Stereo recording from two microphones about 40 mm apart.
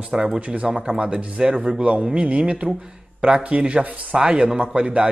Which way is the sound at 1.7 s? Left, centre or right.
Right.